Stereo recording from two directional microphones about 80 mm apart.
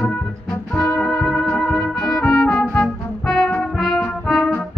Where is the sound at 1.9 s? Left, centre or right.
Centre.